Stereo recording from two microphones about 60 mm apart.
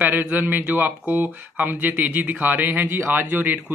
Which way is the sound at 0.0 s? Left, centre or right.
Right.